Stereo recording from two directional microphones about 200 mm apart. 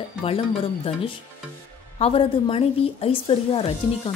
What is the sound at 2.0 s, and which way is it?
A woman's voice, 30° left (ahead or behind).